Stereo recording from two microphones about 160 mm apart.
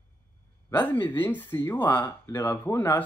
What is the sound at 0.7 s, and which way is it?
Speech, 10° left (ahead or behind).